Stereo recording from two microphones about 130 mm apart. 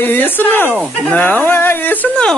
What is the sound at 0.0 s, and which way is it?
Speech, 15° left (ahead or behind).